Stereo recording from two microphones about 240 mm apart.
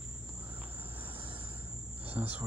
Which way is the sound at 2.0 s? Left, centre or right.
Centre.